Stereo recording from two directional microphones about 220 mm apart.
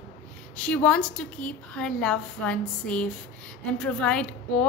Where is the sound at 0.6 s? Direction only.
5° left (ahead or behind).